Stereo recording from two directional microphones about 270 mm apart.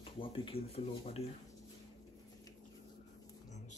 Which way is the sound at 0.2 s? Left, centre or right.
Left.